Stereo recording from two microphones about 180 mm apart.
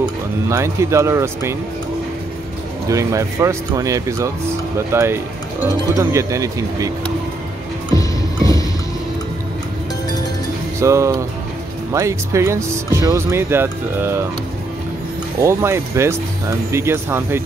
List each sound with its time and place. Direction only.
0.0 s speech: 15° right (ahead or behind)
2.9 s speech: 15° right (ahead or behind)
10.8 s speech: 15° right (ahead or behind)
15.4 s speech: 15° right (ahead or behind)